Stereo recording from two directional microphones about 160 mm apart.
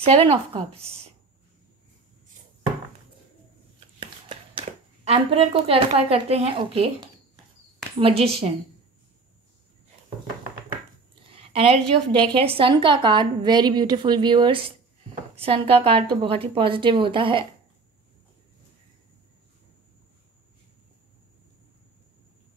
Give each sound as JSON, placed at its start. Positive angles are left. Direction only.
{"t": 0.0, "sound": "a woman's voice", "side_deg": -35}
{"t": 4.0, "sound": "speech", "side_deg": -35}
{"t": 8.0, "sound": "a woman's voice", "side_deg": -35}
{"t": 11.2, "sound": "a sound", "side_deg": -35}
{"t": 12.2, "sound": "a woman's voice", "side_deg": -30}